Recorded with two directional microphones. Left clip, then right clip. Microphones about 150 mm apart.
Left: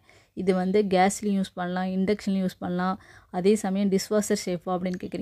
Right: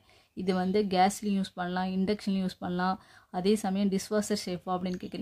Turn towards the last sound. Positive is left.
turn(degrees=35)  # may be behind; listen again after turning